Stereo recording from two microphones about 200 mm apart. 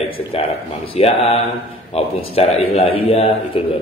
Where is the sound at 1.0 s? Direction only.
30° left (ahead or behind).